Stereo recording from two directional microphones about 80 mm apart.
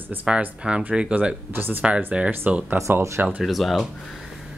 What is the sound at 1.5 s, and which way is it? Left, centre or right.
Speech, right.